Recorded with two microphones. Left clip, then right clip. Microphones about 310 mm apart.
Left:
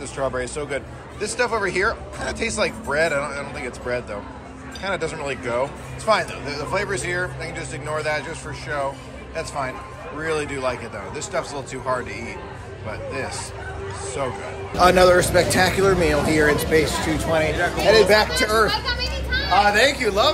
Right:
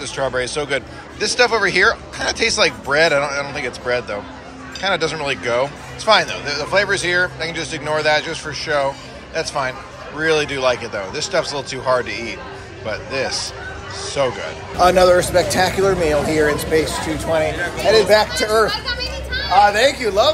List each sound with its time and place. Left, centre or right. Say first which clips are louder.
0.0 s speech: right 4 dB; centre
18.7 s children playing: right 1 dB; centre
19.7 s speech: right 2 dB; centre